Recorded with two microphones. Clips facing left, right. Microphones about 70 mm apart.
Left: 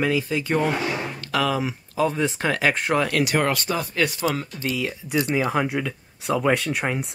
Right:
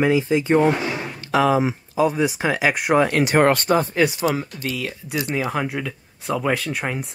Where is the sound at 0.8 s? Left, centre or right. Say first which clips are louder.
Even; right.